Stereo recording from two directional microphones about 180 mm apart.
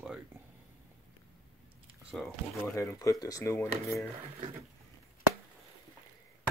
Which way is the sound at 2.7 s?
15° left (ahead or behind).